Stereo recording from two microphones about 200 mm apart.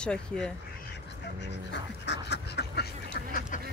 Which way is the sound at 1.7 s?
60° left (ahead or behind).